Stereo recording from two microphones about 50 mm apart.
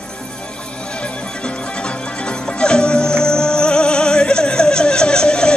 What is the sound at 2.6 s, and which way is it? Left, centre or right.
Music, centre.